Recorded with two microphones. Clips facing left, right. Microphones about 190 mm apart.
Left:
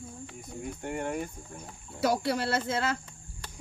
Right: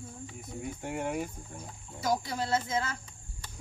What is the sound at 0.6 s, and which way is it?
Speech, centre (ahead or behind).